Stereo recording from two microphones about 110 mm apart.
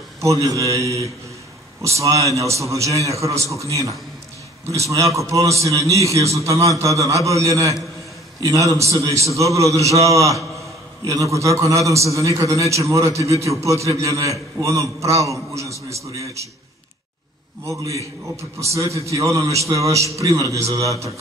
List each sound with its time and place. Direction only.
0.2 s a man's voice: 30° right (ahead or behind)
18.2 s a man's voice: 25° right (ahead or behind)